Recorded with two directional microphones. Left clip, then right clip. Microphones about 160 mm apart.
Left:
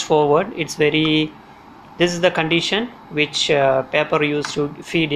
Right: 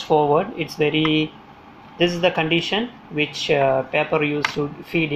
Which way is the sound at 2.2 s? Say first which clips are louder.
Left 3 dB; 10° left (ahead or behind).